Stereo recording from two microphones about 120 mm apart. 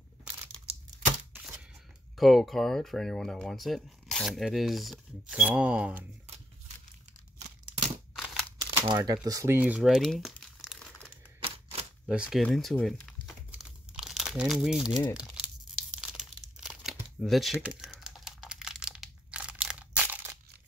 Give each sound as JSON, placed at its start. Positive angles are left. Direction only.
{"t": 0.3, "sound": "crushing", "side_deg": -10}
{"t": 2.1, "sound": "speech", "side_deg": 0}
{"t": 8.2, "sound": "a sound", "side_deg": 0}
{"t": 8.6, "sound": "speech", "side_deg": -40}
{"t": 9.6, "sound": "crumpling", "side_deg": -10}
{"t": 11.4, "sound": "a sound", "side_deg": -50}
{"t": 12.1, "sound": "speech", "side_deg": -5}
{"t": 12.4, "sound": "speech", "side_deg": 5}
{"t": 13.5, "sound": "crumpling", "side_deg": -5}
{"t": 15.1, "sound": "tearing", "side_deg": -5}
{"t": 16.0, "sound": "crumpling", "side_deg": -5}